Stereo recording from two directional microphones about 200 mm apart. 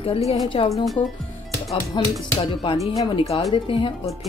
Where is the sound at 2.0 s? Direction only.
20° left (ahead or behind).